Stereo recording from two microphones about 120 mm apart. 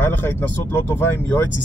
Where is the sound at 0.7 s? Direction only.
20° left (ahead or behind).